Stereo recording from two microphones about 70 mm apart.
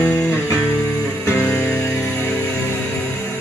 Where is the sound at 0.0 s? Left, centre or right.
Centre.